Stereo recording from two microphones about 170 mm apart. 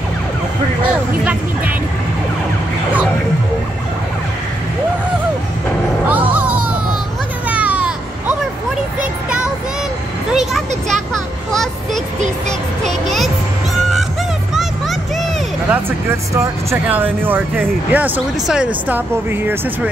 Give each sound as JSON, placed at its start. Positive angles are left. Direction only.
{"t": 6.3, "sound": "music", "side_deg": -10}
{"t": 7.4, "sound": "a sound", "side_deg": -10}
{"t": 10.3, "sound": "a child's voice", "side_deg": 0}
{"t": 12.2, "sound": "speech", "side_deg": -45}
{"t": 14.5, "sound": "music", "side_deg": 0}
{"t": 15.7, "sound": "speech", "side_deg": -15}